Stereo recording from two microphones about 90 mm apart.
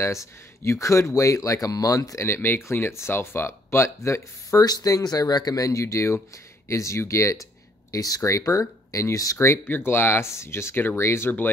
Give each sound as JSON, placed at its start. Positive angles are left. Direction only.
{"t": 0.0, "sound": "speech", "side_deg": 30}
{"t": 4.6, "sound": "speech", "side_deg": 45}